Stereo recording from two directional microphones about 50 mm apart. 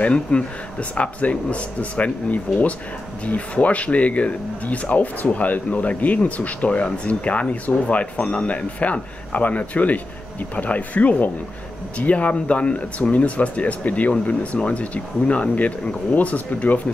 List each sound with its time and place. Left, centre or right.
0.0 s speech: left